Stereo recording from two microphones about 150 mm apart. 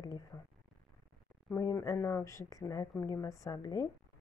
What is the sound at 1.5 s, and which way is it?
Speech, 20° left (ahead or behind).